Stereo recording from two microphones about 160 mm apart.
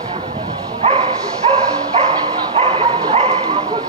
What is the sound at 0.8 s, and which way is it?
Bow-wow, 40° right (ahead or behind).